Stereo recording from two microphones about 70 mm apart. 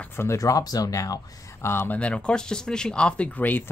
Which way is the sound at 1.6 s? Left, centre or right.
Left.